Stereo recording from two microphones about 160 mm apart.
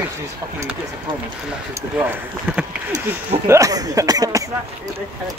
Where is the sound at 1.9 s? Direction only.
10° right (ahead or behind).